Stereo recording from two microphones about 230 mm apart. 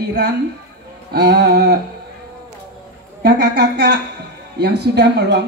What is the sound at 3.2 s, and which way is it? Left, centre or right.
Speech, right.